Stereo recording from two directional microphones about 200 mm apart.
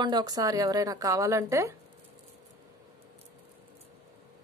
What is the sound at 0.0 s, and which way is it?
Speech, 20° right (ahead or behind).